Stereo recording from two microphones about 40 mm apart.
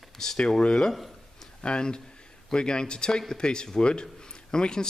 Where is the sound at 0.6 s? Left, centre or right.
Left.